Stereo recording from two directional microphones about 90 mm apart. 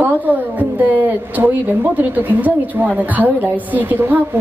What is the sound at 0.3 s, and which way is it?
A woman's voice, 20° right (ahead or behind).